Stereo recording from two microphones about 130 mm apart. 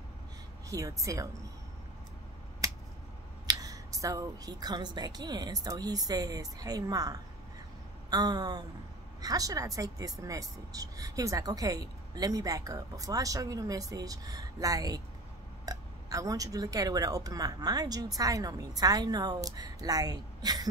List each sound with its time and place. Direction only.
0.7 s speech: 25° right (ahead or behind)
3.4 s speech: 25° right (ahead or behind)